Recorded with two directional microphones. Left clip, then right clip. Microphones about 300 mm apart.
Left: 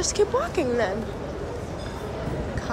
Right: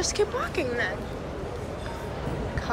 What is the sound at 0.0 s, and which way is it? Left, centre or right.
Speech, centre.